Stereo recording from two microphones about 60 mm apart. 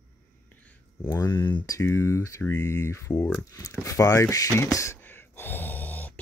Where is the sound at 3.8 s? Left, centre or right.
Left.